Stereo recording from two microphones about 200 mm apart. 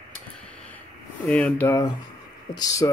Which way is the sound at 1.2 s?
5° left (ahead or behind).